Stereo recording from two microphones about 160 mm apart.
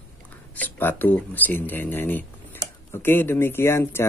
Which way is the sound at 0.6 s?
10° left (ahead or behind).